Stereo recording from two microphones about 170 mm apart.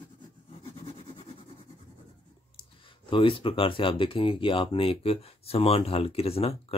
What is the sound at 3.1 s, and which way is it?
Speech, 30° left (ahead or behind).